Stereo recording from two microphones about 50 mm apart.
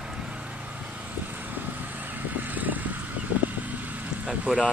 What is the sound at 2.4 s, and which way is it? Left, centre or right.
Vehicle, right.